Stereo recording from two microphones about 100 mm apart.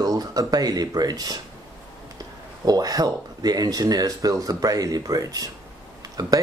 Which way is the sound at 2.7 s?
40° right (ahead or behind).